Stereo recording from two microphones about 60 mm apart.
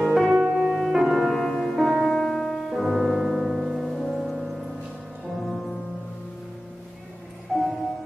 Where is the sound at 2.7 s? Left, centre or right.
Centre.